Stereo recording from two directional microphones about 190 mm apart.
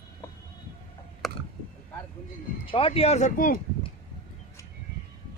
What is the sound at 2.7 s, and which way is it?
Speech, 30° left (ahead or behind).